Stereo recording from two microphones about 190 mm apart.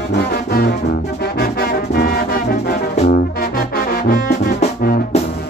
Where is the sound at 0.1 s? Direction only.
55° left (ahead or behind).